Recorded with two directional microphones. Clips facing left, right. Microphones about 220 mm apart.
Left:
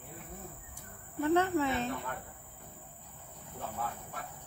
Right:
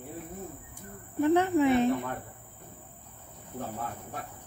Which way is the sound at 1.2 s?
15° right (ahead or behind).